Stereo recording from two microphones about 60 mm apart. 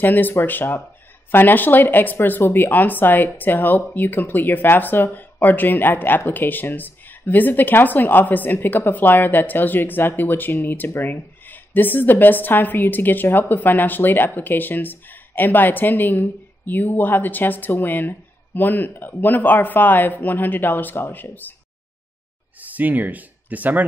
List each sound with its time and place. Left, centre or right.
0.0 s a woman's voice: left
22.6 s speech: right